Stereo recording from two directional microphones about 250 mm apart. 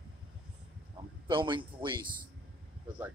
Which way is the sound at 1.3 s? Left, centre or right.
Centre.